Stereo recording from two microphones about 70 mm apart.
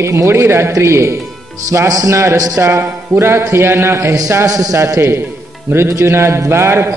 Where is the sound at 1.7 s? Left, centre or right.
Right.